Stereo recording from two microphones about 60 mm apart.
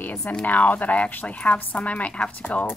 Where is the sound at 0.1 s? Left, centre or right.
Left.